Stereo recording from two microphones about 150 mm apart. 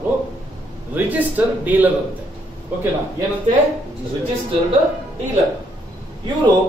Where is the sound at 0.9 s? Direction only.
10° right (ahead or behind).